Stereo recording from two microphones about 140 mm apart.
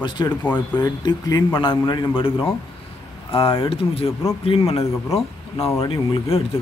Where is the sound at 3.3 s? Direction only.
40° left (ahead or behind).